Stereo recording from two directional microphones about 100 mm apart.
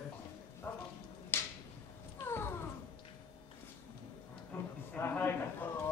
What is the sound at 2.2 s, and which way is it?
Cat, 25° left (ahead or behind).